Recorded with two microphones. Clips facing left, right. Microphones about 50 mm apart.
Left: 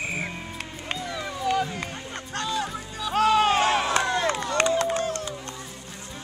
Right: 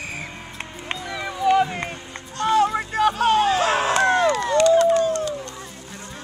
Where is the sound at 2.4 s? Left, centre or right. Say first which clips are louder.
Right 11 dB; right.